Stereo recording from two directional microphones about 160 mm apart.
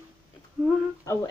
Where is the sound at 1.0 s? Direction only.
20° left (ahead or behind).